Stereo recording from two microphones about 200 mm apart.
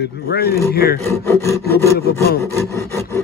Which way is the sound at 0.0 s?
55° left (ahead or behind).